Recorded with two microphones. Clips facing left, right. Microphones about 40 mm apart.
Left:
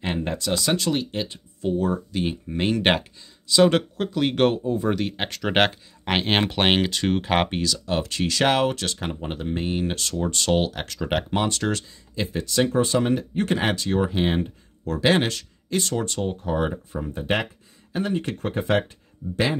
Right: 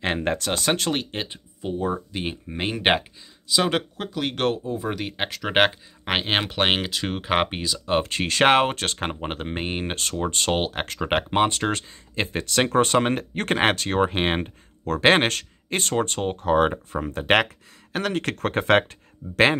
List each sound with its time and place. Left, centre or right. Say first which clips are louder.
0.0 s speech: right 2 dB; right
1.6 s speech: left 3 dB; centre
7.8 s speech: right 2 dB; right
17.0 s speech: right 5 dB; right